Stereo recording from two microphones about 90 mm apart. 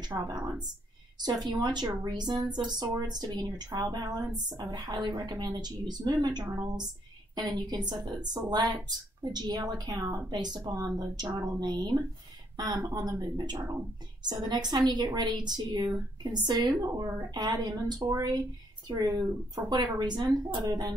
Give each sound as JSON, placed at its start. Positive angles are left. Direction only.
{"t": 0.1, "sound": "a woman's voice", "side_deg": -40}